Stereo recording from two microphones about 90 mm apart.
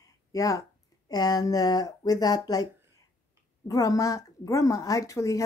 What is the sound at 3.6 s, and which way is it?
Speech, 40° left (ahead or behind).